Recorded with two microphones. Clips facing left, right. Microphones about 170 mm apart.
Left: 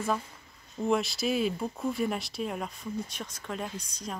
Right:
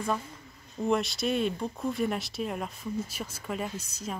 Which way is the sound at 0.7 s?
Centre (ahead or behind).